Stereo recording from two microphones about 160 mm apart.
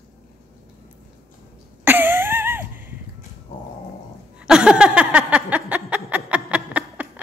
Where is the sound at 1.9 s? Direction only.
15° right (ahead or behind).